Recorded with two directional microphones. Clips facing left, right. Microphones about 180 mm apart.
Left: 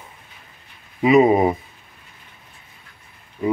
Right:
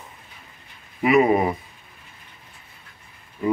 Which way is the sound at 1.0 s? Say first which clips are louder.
Left 3 dB; 20° left (ahead or behind).